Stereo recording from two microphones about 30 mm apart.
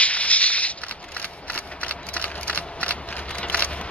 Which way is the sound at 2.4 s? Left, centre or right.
Left.